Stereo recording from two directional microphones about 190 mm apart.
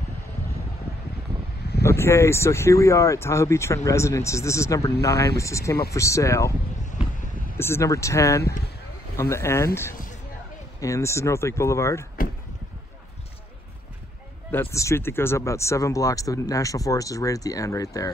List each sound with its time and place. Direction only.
1.8 s speech: 15° left (ahead or behind)
7.5 s speech: 15° left (ahead or behind)
10.8 s speech: 15° left (ahead or behind)
14.5 s speech: 15° left (ahead or behind)